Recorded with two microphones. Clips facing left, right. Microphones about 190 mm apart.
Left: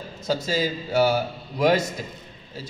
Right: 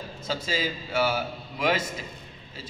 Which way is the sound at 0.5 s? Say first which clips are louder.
Left 5 dB; 40° left (ahead or behind).